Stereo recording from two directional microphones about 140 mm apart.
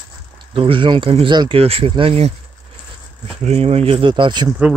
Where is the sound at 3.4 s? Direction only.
50° right (ahead or behind); by 4.5 s 30° right (ahead or behind).